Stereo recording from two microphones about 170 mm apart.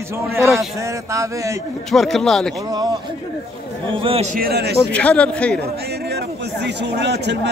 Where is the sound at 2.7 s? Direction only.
25° right (ahead or behind).